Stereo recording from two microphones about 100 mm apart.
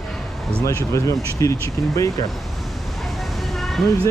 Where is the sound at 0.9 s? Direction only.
30° left (ahead or behind).